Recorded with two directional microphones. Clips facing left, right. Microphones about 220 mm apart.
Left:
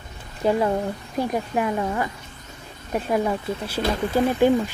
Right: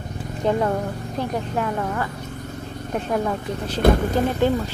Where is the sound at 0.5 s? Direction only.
10° left (ahead or behind).